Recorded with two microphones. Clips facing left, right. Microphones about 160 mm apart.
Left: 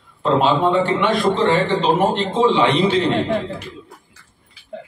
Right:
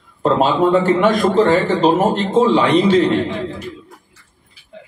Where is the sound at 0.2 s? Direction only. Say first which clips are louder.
Right 2 dB; 40° right (ahead or behind).